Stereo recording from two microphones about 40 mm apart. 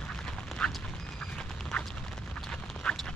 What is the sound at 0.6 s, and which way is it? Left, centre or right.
Duck, left.